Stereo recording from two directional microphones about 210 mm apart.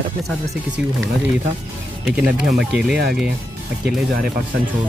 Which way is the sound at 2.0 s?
Centre (ahead or behind).